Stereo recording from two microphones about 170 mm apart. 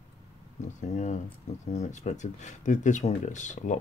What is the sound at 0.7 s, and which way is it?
Speech, 45° left (ahead or behind).